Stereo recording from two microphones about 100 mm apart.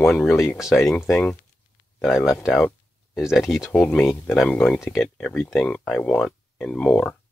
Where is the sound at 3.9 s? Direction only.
20° left (ahead or behind).